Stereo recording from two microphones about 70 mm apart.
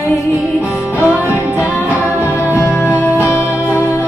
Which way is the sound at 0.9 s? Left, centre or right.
Left.